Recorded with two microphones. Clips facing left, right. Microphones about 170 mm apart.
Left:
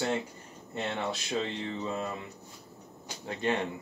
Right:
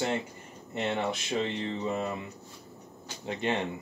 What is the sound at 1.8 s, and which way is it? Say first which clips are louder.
Music: right 3 dB; 20° right (ahead or behind).